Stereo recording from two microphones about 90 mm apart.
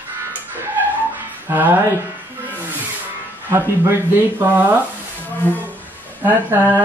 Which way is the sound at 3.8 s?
25° right (ahead or behind).